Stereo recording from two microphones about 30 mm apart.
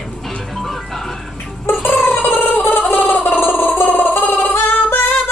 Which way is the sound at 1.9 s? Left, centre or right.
Left.